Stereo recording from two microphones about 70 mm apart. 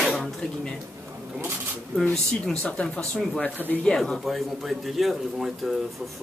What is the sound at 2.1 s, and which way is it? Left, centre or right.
Speech, centre.